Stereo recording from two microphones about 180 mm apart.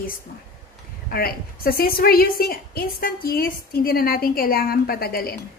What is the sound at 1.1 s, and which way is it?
A woman's voice, 55° left (ahead or behind).